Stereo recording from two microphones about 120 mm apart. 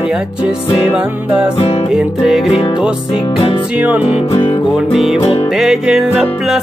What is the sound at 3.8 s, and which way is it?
Music, 10° right (ahead or behind).